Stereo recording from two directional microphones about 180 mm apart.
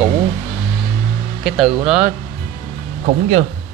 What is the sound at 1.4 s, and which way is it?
Speech, centre (ahead or behind).